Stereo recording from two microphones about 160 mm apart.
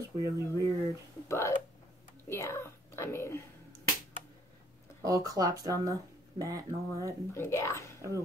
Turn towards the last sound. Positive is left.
turn(degrees=15)  # may be behind; listen again after turning